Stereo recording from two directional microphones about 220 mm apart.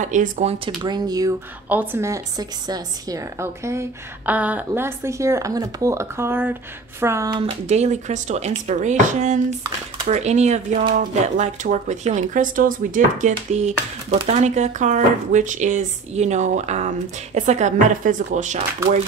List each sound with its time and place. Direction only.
0.0 s speech: 35° right (ahead or behind)
0.8 s a woman's voice: 20° right (ahead or behind)
7.6 s speech: 30° right (ahead or behind)